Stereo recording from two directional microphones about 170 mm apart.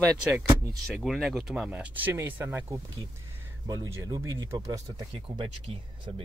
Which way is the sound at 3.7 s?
20° right (ahead or behind).